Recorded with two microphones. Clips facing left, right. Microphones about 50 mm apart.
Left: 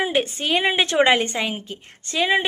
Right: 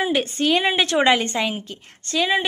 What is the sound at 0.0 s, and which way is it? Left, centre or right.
A woman's voice, centre.